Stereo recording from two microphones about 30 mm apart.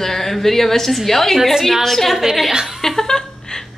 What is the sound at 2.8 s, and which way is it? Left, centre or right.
Chuckle, centre.